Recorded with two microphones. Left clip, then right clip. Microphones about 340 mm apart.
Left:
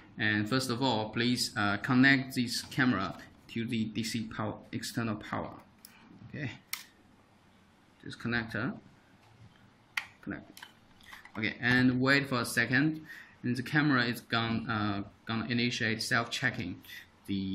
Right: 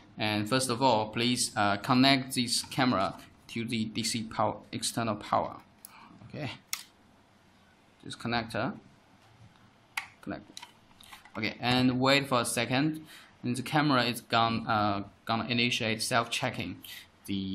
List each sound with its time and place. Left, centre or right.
0.2 s speech: centre
6.3 s speech: centre
8.3 s speech: centre
10.2 s computer keyboard: right
11.3 s speech: centre